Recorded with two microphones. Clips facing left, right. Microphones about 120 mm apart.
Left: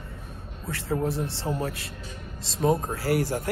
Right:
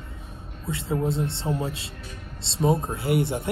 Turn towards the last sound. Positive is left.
turn(degrees=-20)  # may be behind; listen again after turning